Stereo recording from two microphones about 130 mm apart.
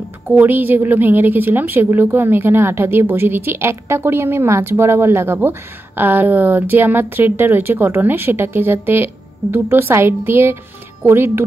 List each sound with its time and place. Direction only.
0.4 s a woman's voice: 15° right (ahead or behind)